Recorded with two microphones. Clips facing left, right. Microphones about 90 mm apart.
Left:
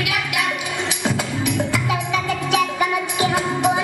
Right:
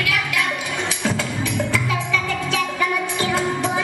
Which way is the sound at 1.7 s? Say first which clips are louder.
Left 1 dB; 15° left (ahead or behind).